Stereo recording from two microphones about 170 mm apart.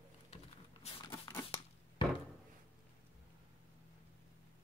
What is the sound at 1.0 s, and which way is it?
Crumpling, 25° left (ahead or behind).